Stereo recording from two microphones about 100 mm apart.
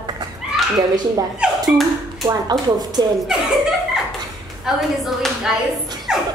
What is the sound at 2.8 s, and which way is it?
Speech, 40° right (ahead or behind).